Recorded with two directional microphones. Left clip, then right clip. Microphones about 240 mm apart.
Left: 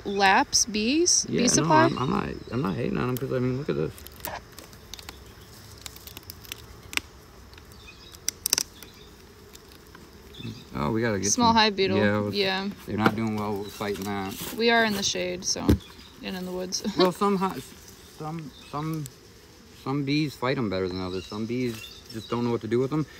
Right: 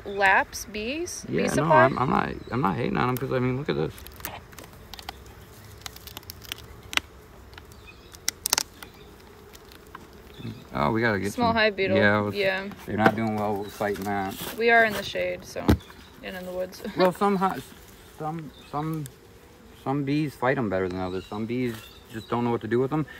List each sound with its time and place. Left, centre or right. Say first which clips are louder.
0.2 s speech: left 1 dB; left
2.0 s speech: right 4 dB; centre
6.1 s a sound: right 3 dB; centre
8.3 s insect: right 1 dB; centre
10.7 s speech: right 3 dB; centre
11.3 s speech: left 4 dB; centre
11.9 s speech: right 3 dB; centre
12.4 s speech: right 1 dB; centre
14.6 s speech: right 2 dB; centre
18.7 s speech: right 2 dB; centre